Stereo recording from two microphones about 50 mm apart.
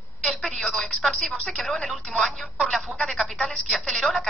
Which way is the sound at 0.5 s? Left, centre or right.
Centre.